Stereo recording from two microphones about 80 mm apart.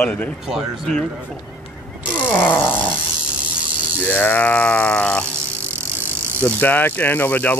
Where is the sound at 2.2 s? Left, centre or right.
Left.